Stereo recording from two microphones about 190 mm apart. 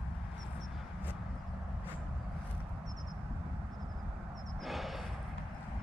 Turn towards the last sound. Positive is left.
turn(degrees=0)  # may be behind; listen again after turning